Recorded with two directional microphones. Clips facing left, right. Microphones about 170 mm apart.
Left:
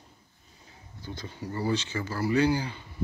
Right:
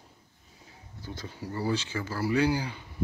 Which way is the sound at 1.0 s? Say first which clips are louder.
Left 1 dB; 5° right (ahead or behind).